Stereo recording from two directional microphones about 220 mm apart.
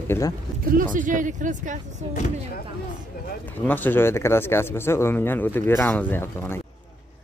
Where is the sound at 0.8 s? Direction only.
35° right (ahead or behind).